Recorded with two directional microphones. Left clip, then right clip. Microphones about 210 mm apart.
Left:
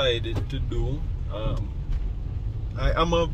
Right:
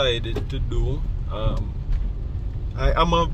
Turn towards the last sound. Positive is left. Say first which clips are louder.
# right 3 dB
turn(degrees=-15)  # may be behind; listen again after turning